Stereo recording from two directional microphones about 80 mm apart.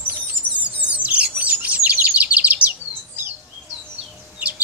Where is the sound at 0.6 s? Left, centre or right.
Centre.